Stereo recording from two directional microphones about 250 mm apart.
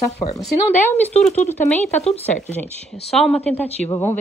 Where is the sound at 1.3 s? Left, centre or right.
Left.